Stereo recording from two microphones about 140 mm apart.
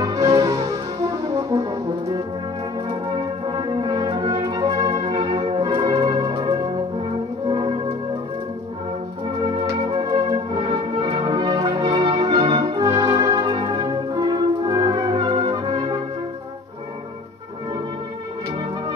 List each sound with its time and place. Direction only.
0.0 s music: 30° right (ahead or behind)
3.4 s brass instrument: 35° right (ahead or behind)
4.9 s music: 40° right (ahead or behind)
9.9 s music: 30° right (ahead or behind)